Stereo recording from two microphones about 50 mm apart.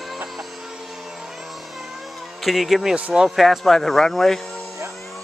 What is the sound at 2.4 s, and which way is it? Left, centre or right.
Speech, centre.